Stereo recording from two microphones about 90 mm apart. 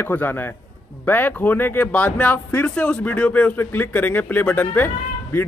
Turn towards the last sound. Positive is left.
turn(degrees=25)  # may be behind; listen again after turning